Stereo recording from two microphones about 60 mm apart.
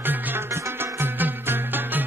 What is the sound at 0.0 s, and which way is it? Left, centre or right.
Music, right.